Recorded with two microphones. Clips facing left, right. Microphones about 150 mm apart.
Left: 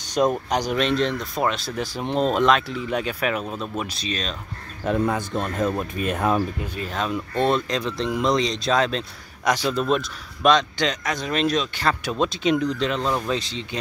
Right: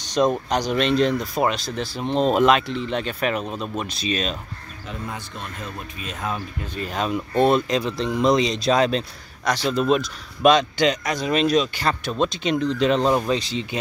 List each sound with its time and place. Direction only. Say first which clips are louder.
0.1 s speech: right 1 dB; 5° left (ahead or behind)
1.8 s speech: right 1 dB; 15° left (ahead or behind)
2.3 s speech: right 2 dB; 5° right (ahead or behind)
2.7 s speech: even; 10° left (ahead or behind)
4.0 s speech: right 4 dB; 10° right (ahead or behind)
4.8 s speech: left 11 dB; 65° left (ahead or behind)
6.7 s speech: right 1 dB; centre (ahead or behind)
9.4 s speech: left 1 dB; 15° left (ahead or behind)
9.8 s speech: right 2 dB; centre (ahead or behind)
12.8 s speech: right 5 dB; 20° right (ahead or behind)
13.3 s speech: right 3 dB; 5° right (ahead or behind)